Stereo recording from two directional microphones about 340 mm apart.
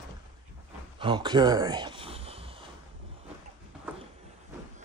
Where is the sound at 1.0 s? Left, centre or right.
Centre.